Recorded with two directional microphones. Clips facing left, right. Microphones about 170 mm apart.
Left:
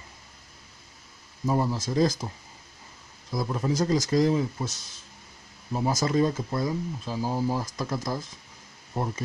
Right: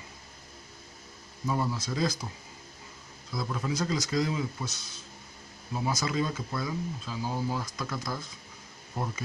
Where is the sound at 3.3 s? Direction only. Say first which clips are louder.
Left 5 dB; 40° left (ahead or behind).